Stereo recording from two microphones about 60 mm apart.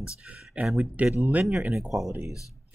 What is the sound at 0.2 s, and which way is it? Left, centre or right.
Speech, centre.